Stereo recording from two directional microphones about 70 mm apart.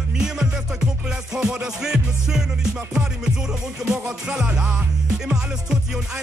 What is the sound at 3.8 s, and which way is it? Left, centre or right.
Music, centre.